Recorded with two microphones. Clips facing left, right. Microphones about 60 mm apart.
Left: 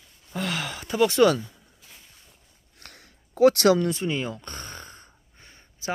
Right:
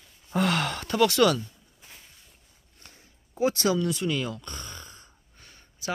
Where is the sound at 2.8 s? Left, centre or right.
Left.